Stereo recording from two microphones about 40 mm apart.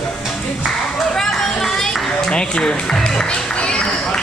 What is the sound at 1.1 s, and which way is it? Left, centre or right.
Run, centre.